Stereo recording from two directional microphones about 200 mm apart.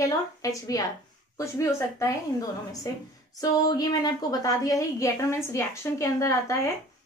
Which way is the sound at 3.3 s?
20° left (ahead or behind).